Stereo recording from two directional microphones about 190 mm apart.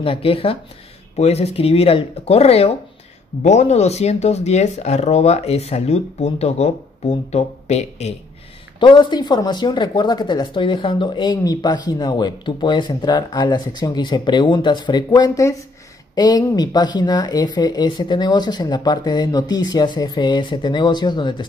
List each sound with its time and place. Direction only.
0.0 s speech: 30° left (ahead or behind)
8.7 s speech: 25° left (ahead or behind)